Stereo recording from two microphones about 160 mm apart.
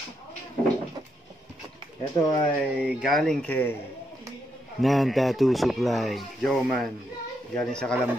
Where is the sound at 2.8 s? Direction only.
5° right (ahead or behind); by 3.7 s 10° left (ahead or behind).